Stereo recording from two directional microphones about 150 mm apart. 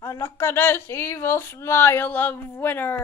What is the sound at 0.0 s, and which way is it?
A child's voice, 20° left (ahead or behind).